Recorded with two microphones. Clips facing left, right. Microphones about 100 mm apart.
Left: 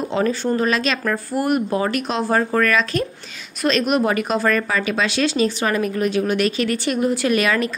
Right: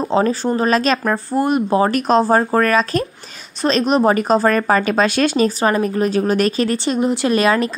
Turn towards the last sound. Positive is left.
turn(degrees=-35)  # may be behind; listen again after turning